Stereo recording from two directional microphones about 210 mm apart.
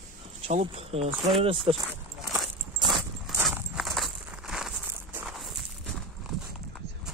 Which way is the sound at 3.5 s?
Centre (ahead or behind).